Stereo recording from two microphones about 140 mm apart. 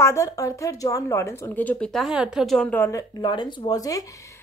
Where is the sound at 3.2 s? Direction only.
35° left (ahead or behind).